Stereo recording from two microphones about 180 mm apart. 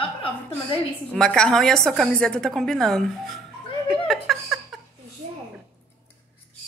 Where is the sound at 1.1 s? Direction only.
5° left (ahead or behind).